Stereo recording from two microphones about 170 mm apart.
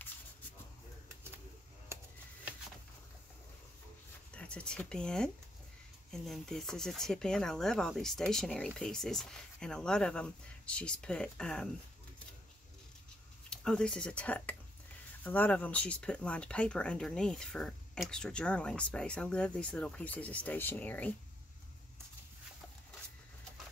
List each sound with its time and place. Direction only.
1.9 s a sound: 15° right (ahead or behind)
4.3 s speech: 5° left (ahead or behind)
13.5 s speech: 5° left (ahead or behind)